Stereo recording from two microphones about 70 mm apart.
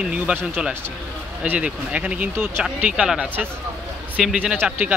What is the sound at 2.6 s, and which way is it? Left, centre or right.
Speech, centre.